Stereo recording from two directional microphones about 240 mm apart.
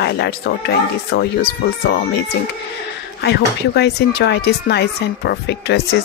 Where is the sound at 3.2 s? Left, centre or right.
Left.